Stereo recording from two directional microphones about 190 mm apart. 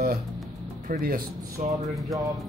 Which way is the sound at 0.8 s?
50° right (ahead or behind).